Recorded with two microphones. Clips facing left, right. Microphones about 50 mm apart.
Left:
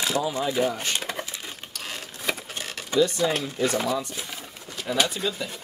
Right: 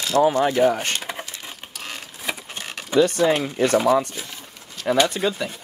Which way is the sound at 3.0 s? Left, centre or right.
Right.